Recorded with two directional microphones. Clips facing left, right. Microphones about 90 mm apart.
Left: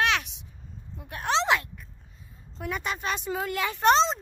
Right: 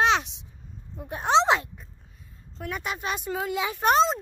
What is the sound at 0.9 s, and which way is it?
Speech, 25° right (ahead or behind).